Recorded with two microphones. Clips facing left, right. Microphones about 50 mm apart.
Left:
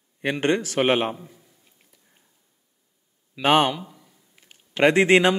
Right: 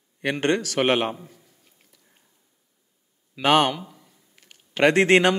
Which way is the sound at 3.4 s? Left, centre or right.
Centre.